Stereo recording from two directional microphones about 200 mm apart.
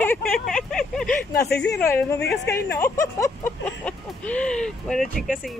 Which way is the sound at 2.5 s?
10° left (ahead or behind).